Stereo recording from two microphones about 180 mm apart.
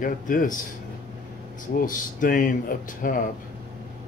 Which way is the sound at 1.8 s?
50° left (ahead or behind).